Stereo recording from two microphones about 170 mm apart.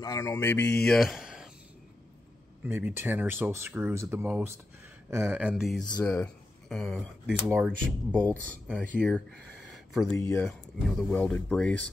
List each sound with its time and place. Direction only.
0.0 s speech: 20° left (ahead or behind); by 1.5 s centre (ahead or behind)
2.6 s speech: 10° right (ahead or behind)
5.9 s speech: 20° left (ahead or behind)
6.7 s speech: 5° left (ahead or behind)
7.2 s speech: 5° right (ahead or behind)
8.9 s speech: centre (ahead or behind)
10.1 s speech: 20° left (ahead or behind)
10.4 s speech: 5° left (ahead or behind)